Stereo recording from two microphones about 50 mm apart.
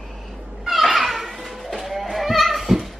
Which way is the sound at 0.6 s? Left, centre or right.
Centre.